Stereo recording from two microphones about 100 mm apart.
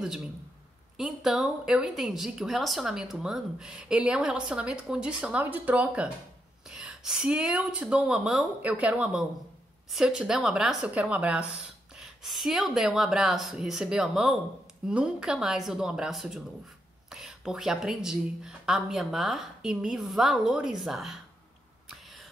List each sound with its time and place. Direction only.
0.9 s a woman's voice: 5° right (ahead or behind)